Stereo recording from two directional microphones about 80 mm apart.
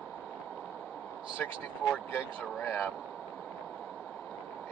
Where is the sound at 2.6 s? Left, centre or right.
Left.